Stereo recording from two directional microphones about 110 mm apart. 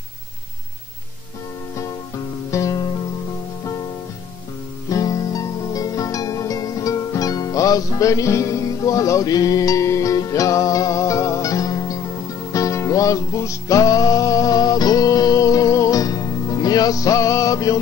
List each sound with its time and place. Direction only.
2.5 s music: 30° left (ahead or behind)
4.8 s music: 30° left (ahead or behind)